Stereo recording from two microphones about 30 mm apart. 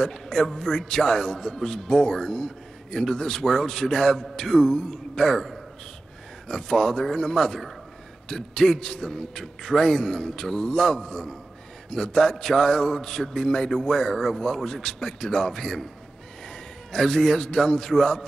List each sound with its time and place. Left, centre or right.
0.0 s a man's voice: centre
6.5 s a man's voice: centre